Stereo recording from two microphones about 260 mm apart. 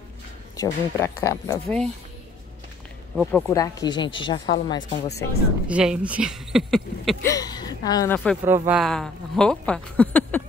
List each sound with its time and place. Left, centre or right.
0.6 s speech: centre
3.2 s speech: centre
5.7 s speech: centre
7.2 s speech: centre
8.5 s speech: centre